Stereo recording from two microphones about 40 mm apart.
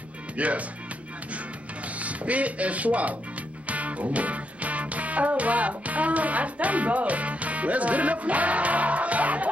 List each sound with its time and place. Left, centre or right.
0.4 s speech: right
2.0 s speech: right
3.6 s music: right